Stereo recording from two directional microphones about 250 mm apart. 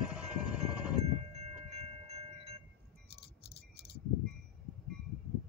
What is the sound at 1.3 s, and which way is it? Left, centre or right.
Train, right.